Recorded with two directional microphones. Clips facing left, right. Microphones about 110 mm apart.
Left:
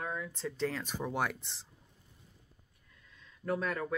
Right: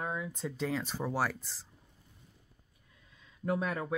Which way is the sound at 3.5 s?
15° right (ahead or behind).